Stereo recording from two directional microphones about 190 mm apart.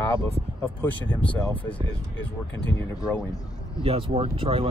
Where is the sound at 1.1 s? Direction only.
10° left (ahead or behind).